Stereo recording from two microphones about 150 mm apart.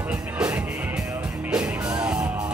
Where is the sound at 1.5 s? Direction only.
5° right (ahead or behind).